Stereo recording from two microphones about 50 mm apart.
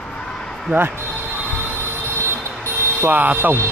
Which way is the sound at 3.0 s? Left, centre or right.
Right.